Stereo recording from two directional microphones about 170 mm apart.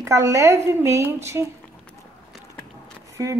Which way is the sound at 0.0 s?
15° right (ahead or behind).